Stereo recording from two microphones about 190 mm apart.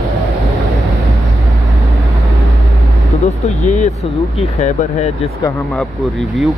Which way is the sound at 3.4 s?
40° left (ahead or behind).